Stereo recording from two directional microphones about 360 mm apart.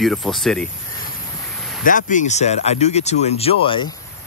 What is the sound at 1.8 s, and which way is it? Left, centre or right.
Speech, left.